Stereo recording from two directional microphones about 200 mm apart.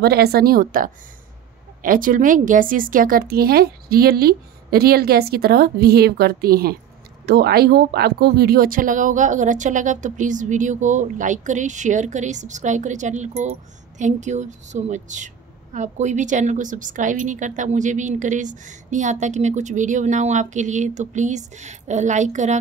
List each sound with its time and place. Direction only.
0.0 s a woman's voice: 50° right (ahead or behind); by 22.6 s 35° right (ahead or behind)